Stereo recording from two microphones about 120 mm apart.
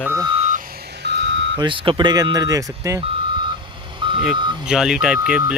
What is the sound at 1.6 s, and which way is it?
Speech, 40° right (ahead or behind).